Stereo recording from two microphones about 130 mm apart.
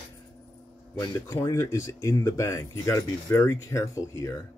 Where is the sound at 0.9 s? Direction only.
25° left (ahead or behind).